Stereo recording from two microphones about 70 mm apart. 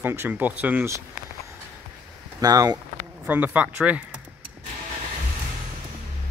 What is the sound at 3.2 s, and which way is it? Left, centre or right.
Speech, right.